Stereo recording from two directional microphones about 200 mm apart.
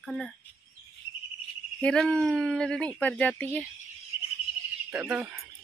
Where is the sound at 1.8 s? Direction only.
5° left (ahead or behind).